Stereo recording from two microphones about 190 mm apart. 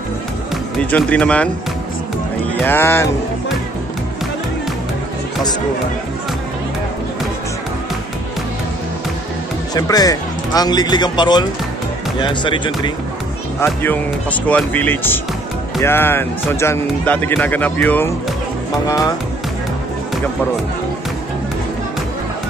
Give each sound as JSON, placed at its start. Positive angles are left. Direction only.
{"t": 0.8, "sound": "speech", "side_deg": 5}
{"t": 2.6, "sound": "speech", "side_deg": 10}
{"t": 9.8, "sound": "speech", "side_deg": 20}
{"t": 13.6, "sound": "speech", "side_deg": 10}